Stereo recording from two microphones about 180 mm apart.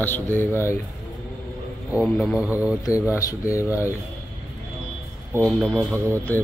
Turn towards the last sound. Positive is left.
turn(degrees=-15)  # may be behind; listen again after turning